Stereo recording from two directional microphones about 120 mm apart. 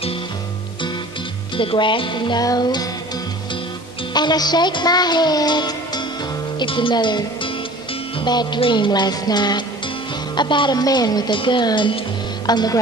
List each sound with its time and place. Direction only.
1.6 s speech: 45° left (ahead or behind)
4.1 s speech: 35° left (ahead or behind)